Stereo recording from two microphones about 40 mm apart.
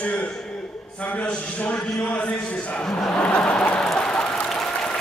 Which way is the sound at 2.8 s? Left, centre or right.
Centre.